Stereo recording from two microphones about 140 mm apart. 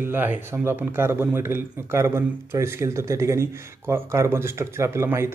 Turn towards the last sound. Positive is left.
turn(degrees=-20)  # may be behind; listen again after turning